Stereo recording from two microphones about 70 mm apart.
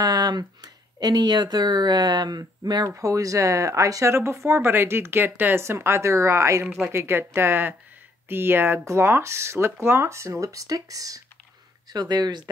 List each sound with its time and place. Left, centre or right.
0.0 s speech: right
3.0 s speech: right
11.9 s speech: right